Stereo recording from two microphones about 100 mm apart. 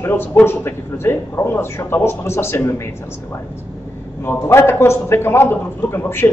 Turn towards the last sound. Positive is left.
turn(degrees=20)  # may be behind; listen again after turning